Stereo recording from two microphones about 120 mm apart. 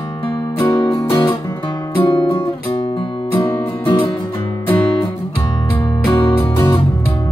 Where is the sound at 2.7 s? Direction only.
45° left (ahead or behind).